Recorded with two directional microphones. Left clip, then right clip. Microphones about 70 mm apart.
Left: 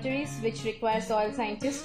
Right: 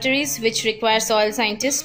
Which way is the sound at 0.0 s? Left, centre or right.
Right.